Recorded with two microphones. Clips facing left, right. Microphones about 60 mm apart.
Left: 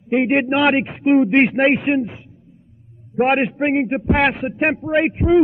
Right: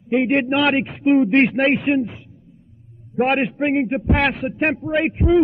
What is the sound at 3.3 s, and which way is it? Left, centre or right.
A man's voice, centre.